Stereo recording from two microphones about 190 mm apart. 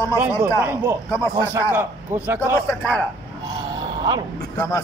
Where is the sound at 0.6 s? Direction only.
15° right (ahead or behind).